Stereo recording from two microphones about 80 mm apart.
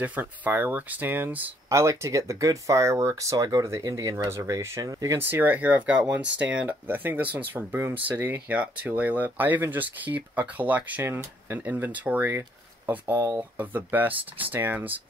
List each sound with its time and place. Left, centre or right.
0.0 s speech: right
1.7 s speech: right
5.3 s speech: right